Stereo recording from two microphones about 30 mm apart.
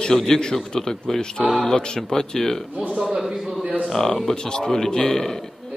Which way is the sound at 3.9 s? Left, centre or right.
Centre.